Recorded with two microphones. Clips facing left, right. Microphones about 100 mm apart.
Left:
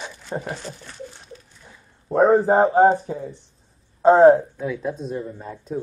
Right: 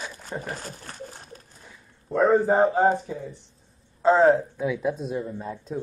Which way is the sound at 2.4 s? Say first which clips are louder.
Left 4 dB; 35° left (ahead or behind).